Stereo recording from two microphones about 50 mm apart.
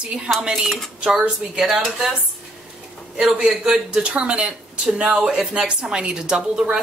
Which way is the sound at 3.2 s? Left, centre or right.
Centre.